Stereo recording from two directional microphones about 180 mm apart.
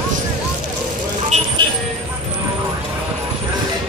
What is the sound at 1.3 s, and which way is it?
Vehicle, 40° right (ahead or behind).